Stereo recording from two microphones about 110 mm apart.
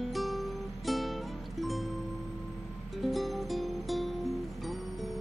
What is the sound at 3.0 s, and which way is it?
Music, centre (ahead or behind).